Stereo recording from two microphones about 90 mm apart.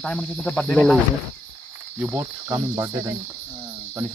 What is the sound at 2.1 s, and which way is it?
Cricket, 25° right (ahead or behind).